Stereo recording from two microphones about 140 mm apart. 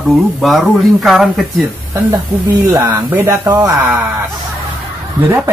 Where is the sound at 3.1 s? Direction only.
15° right (ahead or behind).